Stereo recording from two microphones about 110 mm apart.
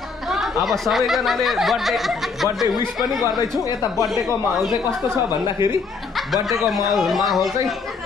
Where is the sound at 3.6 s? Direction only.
30° left (ahead or behind).